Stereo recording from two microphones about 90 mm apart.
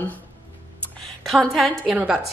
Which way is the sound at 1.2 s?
Centre (ahead or behind).